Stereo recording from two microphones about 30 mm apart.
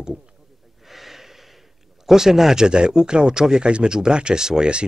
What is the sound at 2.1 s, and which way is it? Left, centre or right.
Speech, centre.